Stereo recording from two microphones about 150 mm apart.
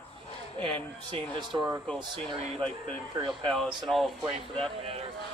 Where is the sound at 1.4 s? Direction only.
30° right (ahead or behind).